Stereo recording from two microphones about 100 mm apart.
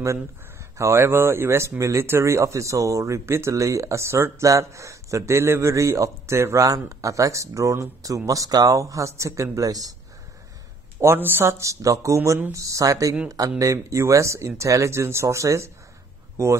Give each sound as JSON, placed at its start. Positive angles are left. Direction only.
{"t": 0.7, "sound": "speech", "side_deg": -25}
{"t": 11.0, "sound": "speech", "side_deg": -25}